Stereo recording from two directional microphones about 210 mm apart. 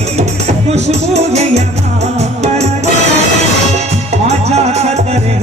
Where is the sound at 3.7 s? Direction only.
30° right (ahead or behind).